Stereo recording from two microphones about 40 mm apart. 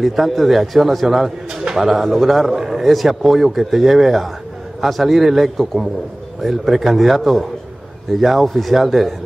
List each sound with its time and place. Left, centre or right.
0.0 s a man's voice: centre
1.5 s bird: centre
1.8 s a man's voice: centre